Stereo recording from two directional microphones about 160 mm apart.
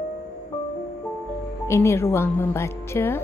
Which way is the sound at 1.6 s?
15° left (ahead or behind).